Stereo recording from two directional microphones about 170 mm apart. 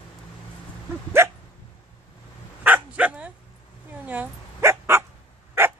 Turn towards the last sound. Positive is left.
turn(degrees=-15)  # may be behind; listen again after turning